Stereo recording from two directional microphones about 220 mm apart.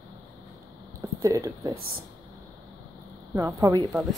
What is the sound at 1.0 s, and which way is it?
Speech, 15° right (ahead or behind).